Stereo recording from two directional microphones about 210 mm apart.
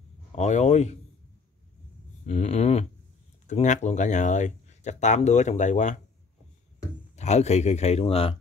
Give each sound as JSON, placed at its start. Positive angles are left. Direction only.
{"t": 0.4, "sound": "speech", "side_deg": 35}
{"t": 2.2, "sound": "speech", "side_deg": 35}
{"t": 7.2, "sound": "speech", "side_deg": 30}